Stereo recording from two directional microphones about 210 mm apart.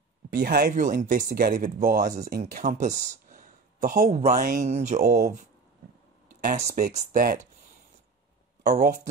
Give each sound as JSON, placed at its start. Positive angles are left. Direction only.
{"t": 0.3, "sound": "speech", "side_deg": -45}
{"t": 6.4, "sound": "speech", "side_deg": -35}
{"t": 8.6, "sound": "speech", "side_deg": -35}